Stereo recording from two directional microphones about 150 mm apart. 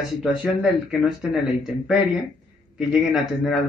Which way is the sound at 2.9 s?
Centre (ahead or behind).